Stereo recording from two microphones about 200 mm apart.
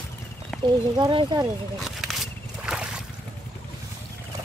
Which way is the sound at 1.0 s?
25° right (ahead or behind).